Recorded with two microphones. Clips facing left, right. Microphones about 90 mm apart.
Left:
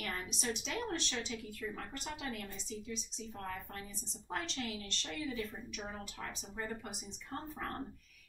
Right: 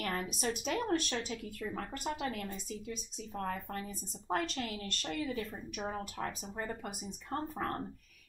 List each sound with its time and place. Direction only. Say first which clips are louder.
0.0 s speech: right 5 dB; 45° right (ahead or behind)